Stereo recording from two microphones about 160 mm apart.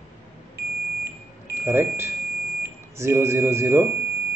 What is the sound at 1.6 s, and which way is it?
Speech, 15° right (ahead or behind).